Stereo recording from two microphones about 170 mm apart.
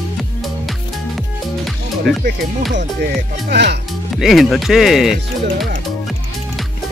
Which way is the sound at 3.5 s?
80° right.